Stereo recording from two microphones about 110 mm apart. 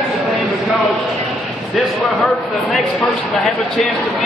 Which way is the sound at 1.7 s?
Centre (ahead or behind).